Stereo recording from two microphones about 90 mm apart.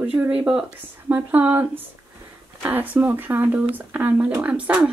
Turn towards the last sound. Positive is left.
turn(degrees=-15)  # may be behind; listen again after turning